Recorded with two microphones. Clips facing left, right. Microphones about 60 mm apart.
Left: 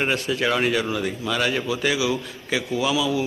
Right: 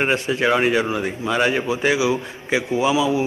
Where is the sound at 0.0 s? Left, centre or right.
Right.